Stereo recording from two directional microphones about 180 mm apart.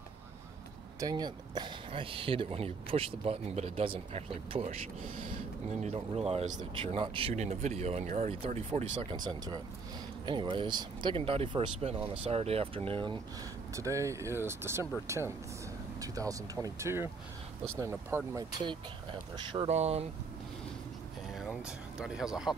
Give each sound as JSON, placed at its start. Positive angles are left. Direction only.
{"t": 0.9, "sound": "speech", "side_deg": -20}
{"t": 9.1, "sound": "speech", "side_deg": -25}
{"t": 12.0, "sound": "speech", "side_deg": -10}
{"t": 12.3, "sound": "speech", "side_deg": -35}
{"t": 13.7, "sound": "speech", "side_deg": -15}
{"t": 19.7, "sound": "speech", "side_deg": -35}
{"t": 21.4, "sound": "speech", "side_deg": 0}